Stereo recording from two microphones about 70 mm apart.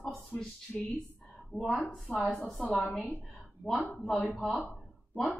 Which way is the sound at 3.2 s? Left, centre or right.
Centre.